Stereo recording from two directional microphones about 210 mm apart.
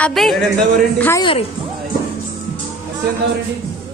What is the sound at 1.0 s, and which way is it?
Speech, 10° left (ahead or behind).